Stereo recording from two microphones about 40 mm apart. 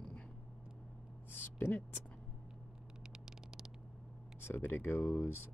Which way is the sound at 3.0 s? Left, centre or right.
Centre.